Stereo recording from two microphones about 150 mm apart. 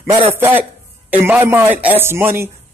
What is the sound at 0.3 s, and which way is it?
Speech, 15° right (ahead or behind).